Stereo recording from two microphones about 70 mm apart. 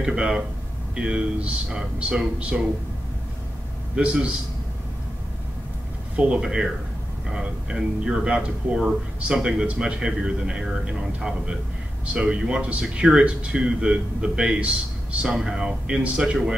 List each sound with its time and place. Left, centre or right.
0.0 s speech: centre
3.9 s speech: centre
6.1 s speech: centre